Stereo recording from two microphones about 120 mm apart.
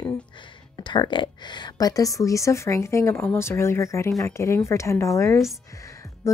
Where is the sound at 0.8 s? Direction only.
40° left (ahead or behind).